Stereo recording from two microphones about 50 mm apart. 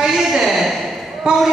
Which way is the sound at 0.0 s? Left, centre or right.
Centre.